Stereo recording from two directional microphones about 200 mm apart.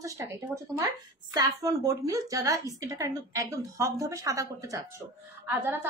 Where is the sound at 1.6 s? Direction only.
15° right (ahead or behind).